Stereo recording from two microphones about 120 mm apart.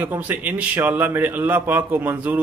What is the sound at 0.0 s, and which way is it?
A man's voice, 15° right (ahead or behind).